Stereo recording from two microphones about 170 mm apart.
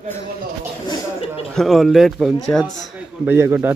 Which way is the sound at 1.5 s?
Centre (ahead or behind).